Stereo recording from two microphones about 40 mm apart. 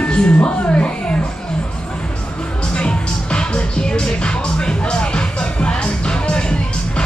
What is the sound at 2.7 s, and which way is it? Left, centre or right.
Music, left.